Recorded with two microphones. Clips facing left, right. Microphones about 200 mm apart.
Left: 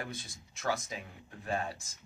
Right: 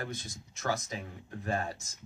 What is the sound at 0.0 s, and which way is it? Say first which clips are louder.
A man's voice: right 3 dB; 40° right (ahead or behind).